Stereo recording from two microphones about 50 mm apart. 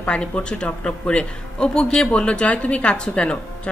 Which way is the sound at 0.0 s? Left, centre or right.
Left.